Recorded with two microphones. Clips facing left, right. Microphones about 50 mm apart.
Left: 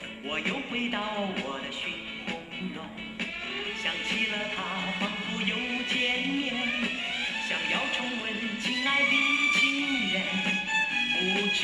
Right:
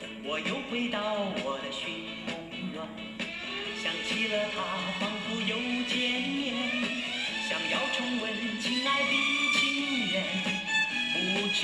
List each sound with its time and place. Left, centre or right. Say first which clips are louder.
0.3 s speech: left 1 dB; left
3.8 s music: left 2 dB; left